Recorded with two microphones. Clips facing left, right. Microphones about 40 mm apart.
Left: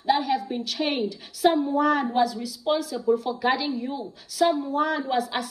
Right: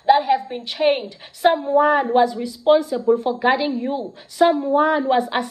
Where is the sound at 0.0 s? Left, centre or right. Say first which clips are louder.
Right 7 dB; right.